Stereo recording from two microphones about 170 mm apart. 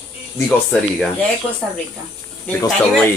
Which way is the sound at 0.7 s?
5° left (ahead or behind).